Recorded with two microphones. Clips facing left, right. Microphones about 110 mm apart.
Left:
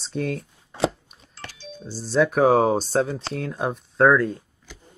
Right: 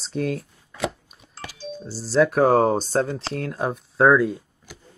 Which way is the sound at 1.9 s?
Centre (ahead or behind).